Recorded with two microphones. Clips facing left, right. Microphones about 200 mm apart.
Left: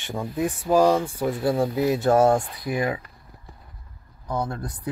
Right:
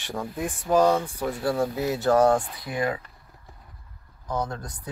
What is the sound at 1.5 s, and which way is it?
Speech, 20° left (ahead or behind).